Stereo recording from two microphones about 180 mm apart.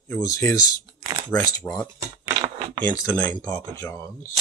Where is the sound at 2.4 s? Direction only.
25° right (ahead or behind).